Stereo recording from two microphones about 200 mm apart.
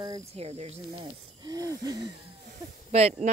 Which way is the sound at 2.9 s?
30° right (ahead or behind).